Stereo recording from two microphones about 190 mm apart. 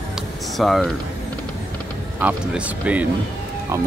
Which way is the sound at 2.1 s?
10° right (ahead or behind).